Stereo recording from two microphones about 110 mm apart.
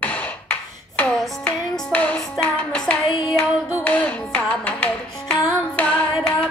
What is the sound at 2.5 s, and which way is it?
Music, 10° left (ahead or behind).